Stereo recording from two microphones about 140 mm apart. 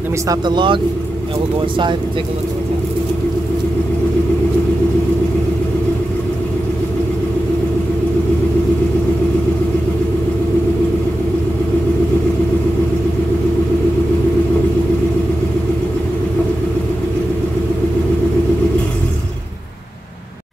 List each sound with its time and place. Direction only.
0.3 s speech: 35° right (ahead or behind)